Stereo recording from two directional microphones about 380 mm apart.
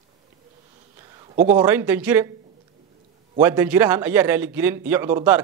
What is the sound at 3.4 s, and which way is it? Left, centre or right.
A man's voice, centre.